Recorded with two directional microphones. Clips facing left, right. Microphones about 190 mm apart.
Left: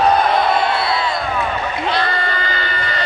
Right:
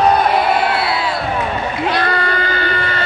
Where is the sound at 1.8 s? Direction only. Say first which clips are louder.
Right 3 dB; 45° right (ahead or behind).